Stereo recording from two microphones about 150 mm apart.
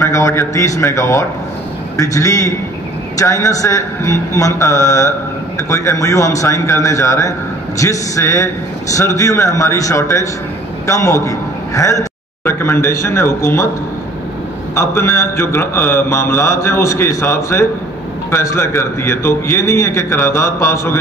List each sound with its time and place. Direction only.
0.0 s a man's voice: 20° left (ahead or behind)
14.8 s a man's voice: 15° left (ahead or behind)